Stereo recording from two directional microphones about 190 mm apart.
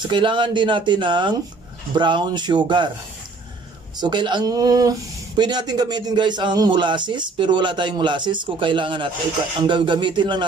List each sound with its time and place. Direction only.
0.1 s speech: 25° right (ahead or behind)
4.0 s speech: 25° right (ahead or behind)